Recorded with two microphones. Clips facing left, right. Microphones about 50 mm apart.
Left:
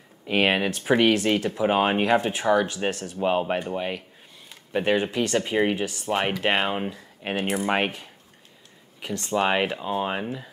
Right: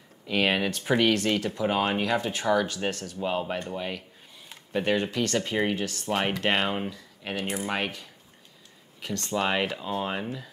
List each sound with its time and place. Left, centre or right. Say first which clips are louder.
0.3 s speech: left 3 dB; left
0.7 s speech: left 3 dB; centre
1.7 s speech: left 5 dB; left
2.3 s speech: left 3 dB; centre
3.1 s speech: left 5 dB; left
6.9 s speech: left 5 dB; left
9.0 s speech: left 4 dB; centre